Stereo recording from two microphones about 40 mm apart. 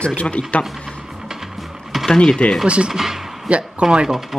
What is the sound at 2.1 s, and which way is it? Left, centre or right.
Speech, centre.